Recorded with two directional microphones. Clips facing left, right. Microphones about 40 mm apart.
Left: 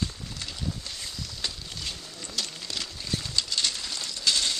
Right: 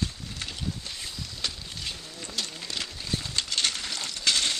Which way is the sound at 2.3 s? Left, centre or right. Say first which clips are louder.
Even; centre.